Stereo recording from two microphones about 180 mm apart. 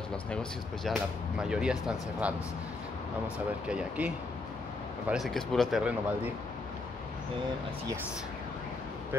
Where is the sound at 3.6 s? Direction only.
5° right (ahead or behind).